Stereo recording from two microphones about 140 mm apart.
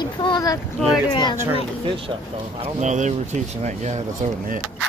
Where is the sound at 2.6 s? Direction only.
55° right (ahead or behind).